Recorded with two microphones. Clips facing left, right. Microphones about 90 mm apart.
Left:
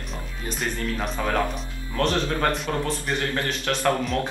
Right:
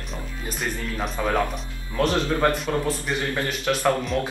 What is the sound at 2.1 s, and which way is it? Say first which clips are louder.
Speech: right 4 dB; 15° right (ahead or behind).